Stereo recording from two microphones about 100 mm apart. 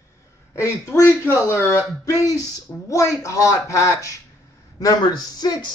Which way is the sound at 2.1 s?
35° left (ahead or behind).